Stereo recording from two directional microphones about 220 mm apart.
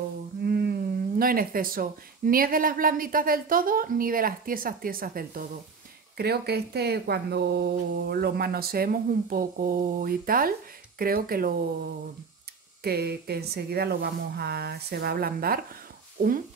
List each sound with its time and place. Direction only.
0.4 s speech: 45° right (ahead or behind)